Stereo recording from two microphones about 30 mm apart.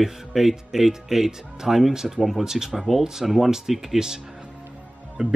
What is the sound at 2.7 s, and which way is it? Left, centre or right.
Speech, centre.